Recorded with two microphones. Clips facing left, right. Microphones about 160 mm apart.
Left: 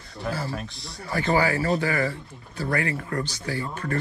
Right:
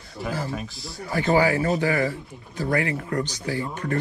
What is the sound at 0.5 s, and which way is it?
Speech, centre (ahead or behind).